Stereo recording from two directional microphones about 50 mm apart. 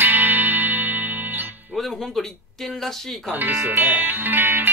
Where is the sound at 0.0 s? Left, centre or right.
Right.